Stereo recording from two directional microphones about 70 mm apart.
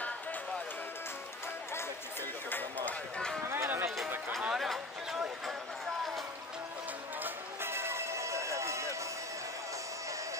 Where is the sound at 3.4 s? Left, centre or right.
Right.